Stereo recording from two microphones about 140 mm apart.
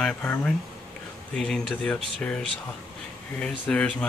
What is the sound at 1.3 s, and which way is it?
Speech, 5° left (ahead or behind).